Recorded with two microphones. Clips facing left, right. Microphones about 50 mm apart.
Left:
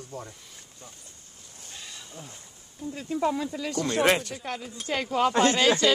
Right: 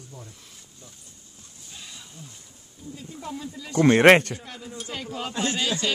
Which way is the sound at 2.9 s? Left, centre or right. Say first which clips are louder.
Left 9 dB; left.